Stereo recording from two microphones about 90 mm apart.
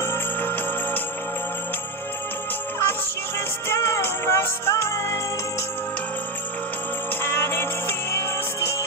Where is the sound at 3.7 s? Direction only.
30° left (ahead or behind).